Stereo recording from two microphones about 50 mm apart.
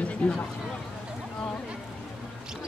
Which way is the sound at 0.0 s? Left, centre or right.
Left.